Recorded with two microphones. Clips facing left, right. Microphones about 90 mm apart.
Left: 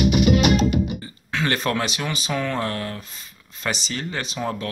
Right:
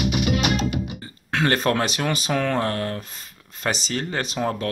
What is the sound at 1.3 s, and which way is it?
Speech, 40° right (ahead or behind).